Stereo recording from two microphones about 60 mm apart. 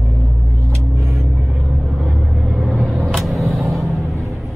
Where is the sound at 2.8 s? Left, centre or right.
Centre.